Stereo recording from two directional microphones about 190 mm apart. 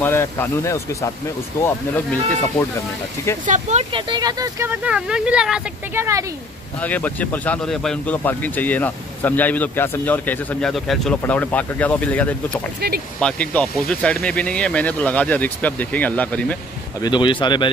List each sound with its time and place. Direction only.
0.0 s speech: 10° left (ahead or behind)
3.4 s speech: 40° right (ahead or behind)
3.9 s speech: 20° right (ahead or behind); by 6.0 s 5° right (ahead or behind)
6.8 s speech: 10° left (ahead or behind)
17.0 s speech: 25° left (ahead or behind)